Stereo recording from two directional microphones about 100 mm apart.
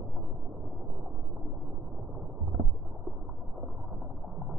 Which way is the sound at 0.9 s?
10° right (ahead or behind).